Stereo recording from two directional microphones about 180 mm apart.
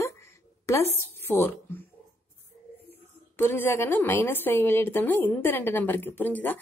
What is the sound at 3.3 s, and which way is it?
A woman's voice, 10° left (ahead or behind).